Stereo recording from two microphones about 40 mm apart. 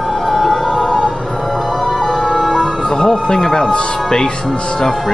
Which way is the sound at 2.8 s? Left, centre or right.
Centre.